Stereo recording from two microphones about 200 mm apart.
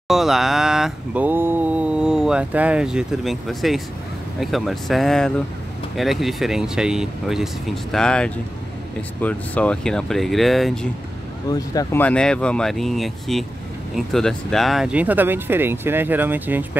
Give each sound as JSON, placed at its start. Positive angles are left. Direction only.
{"t": 0.1, "sound": "speech", "side_deg": 0}
{"t": 11.5, "sound": "speech", "side_deg": 20}